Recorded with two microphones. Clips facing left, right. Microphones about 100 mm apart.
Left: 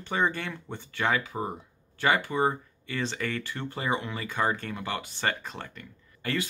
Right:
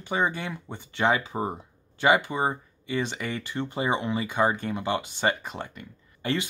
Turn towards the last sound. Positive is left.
turn(degrees=-20)  # may be behind; listen again after turning